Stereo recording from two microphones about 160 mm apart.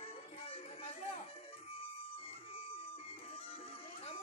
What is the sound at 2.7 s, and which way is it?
Music, 35° left (ahead or behind).